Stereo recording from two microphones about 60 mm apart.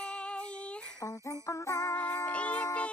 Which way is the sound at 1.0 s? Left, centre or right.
Left.